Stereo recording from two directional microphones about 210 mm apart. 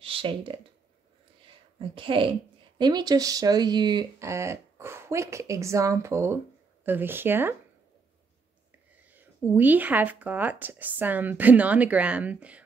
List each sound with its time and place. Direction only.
0.0 s speech: 25° right (ahead or behind)
1.8 s a woman's voice: 25° right (ahead or behind)
9.0 s speech: 10° right (ahead or behind)